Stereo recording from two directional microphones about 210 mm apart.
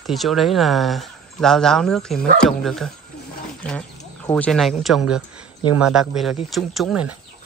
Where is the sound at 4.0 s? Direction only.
15° left (ahead or behind).